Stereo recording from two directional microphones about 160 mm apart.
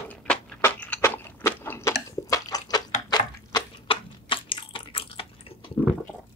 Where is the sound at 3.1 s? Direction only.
30° left (ahead or behind).